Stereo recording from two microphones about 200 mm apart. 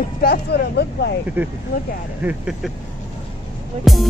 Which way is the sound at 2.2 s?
5° right (ahead or behind).